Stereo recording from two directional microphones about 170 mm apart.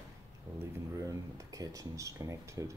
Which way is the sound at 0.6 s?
20° right (ahead or behind).